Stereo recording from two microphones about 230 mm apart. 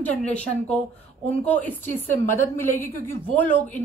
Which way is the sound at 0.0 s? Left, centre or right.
Centre.